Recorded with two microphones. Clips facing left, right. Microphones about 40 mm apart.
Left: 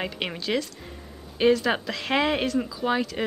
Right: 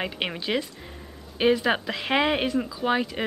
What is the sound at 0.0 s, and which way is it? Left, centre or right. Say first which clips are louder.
Speech: right 1 dB; centre.